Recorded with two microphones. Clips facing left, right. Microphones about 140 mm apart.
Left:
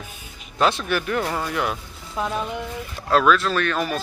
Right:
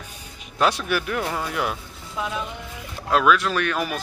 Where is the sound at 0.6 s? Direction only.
10° right (ahead or behind).